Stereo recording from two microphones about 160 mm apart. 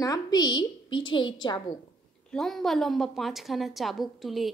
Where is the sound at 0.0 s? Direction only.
25° left (ahead or behind).